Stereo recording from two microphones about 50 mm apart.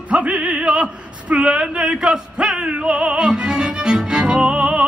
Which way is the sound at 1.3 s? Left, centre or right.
Right.